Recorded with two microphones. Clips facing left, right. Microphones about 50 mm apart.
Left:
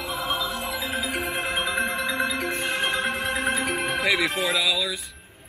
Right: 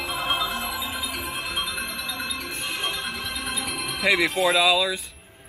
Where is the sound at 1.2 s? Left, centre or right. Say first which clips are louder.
Left 4 dB; left.